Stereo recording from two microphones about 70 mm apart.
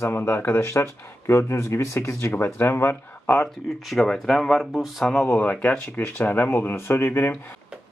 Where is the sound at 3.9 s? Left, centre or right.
Centre.